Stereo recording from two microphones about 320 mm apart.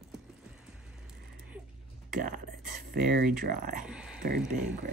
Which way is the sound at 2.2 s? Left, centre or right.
Right.